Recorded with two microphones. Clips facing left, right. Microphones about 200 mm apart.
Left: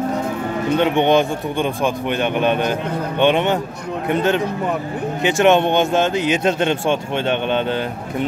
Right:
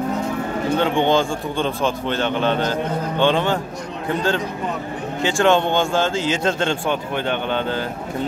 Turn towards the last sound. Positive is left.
turn(degrees=20)  # may be behind; listen again after turning